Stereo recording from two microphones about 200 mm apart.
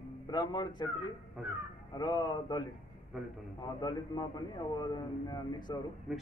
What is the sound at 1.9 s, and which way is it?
Speech, 20° left (ahead or behind).